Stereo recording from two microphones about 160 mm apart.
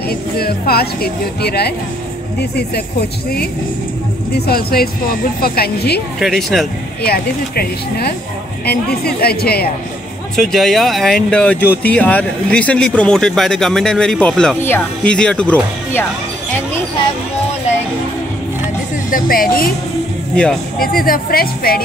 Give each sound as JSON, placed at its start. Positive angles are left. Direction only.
{"t": 0.1, "sound": "speech", "side_deg": 75}
{"t": 4.5, "sound": "speech", "side_deg": 70}
{"t": 6.1, "sound": "speech", "side_deg": 0}
{"t": 7.0, "sound": "speech", "side_deg": 75}
{"t": 10.3, "sound": "speech", "side_deg": 0}
{"t": 19.0, "sound": "speech", "side_deg": 60}
{"t": 20.8, "sound": "speech", "side_deg": 65}